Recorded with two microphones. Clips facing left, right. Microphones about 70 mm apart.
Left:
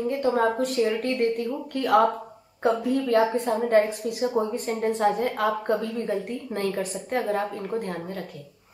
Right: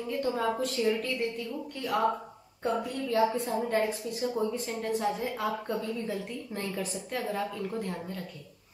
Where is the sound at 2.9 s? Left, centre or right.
Left.